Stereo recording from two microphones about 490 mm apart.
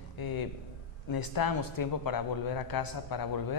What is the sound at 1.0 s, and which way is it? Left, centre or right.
A man's voice, left.